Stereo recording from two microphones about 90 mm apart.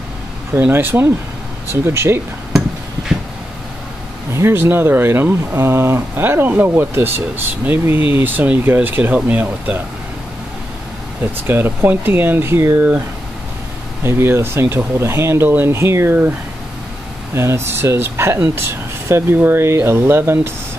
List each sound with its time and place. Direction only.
0.6 s speech: 25° right (ahead or behind)
4.3 s speech: 30° right (ahead or behind)
11.4 s speech: 25° right (ahead or behind)
14.0 s speech: 25° right (ahead or behind)